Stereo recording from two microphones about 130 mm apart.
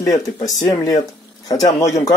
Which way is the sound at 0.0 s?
25° left (ahead or behind).